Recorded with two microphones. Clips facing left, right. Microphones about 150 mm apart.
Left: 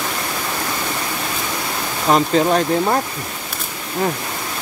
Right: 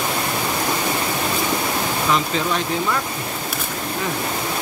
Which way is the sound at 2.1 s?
40° left (ahead or behind).